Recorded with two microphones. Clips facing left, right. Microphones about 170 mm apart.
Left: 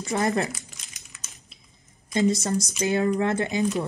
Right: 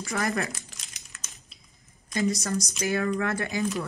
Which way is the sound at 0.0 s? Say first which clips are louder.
Left 4 dB; 20° left (ahead or behind).